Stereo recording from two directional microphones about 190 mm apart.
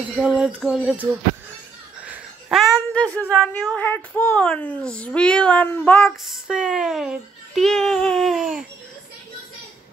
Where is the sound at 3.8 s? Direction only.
10° left (ahead or behind).